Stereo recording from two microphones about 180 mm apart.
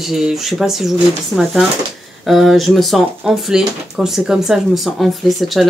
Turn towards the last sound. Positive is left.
turn(degrees=0)  # may be behind; listen again after turning